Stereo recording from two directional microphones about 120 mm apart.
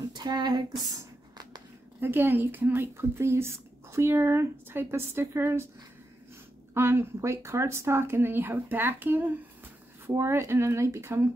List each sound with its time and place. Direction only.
0.1 s speech: 35° right (ahead or behind)
2.0 s speech: 15° right (ahead or behind)
6.7 s speech: 20° right (ahead or behind)